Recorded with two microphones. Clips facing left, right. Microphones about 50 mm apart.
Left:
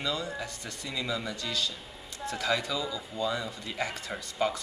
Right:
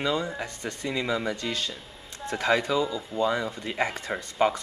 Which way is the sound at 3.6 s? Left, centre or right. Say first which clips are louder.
Right 5 dB; right.